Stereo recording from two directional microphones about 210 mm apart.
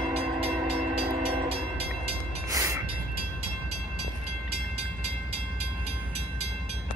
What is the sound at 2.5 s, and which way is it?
Train, 15° right (ahead or behind).